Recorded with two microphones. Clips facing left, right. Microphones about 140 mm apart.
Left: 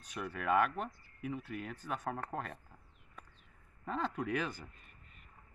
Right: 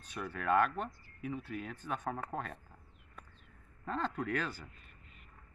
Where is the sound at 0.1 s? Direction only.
5° left (ahead or behind).